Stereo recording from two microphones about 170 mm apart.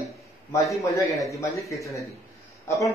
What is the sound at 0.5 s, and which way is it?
Speech, 20° left (ahead or behind).